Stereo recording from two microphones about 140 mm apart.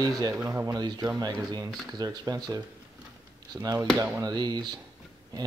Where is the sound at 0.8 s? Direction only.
30° right (ahead or behind); by 4.2 s 15° right (ahead or behind).